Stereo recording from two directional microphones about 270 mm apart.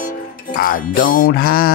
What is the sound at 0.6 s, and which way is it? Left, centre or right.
Music, left.